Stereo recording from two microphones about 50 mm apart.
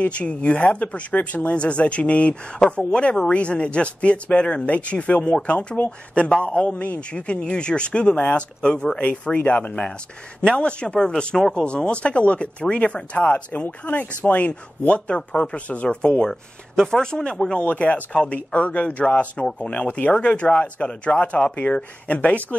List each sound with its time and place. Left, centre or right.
0.0 s speech: left
10.4 s speech: centre
11.1 s speech: centre
17.6 s speech: left
21.5 s speech: left